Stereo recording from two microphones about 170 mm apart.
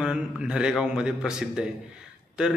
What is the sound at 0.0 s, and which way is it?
A man's voice, 5° right (ahead or behind).